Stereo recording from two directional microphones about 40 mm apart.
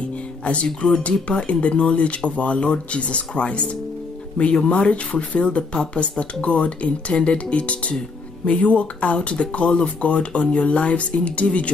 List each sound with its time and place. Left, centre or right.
0.8 s speech: left
4.6 s speech: left